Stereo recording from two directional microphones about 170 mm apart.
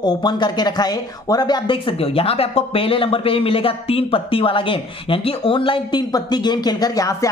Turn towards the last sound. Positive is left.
turn(degrees=20)  # may be behind; listen again after turning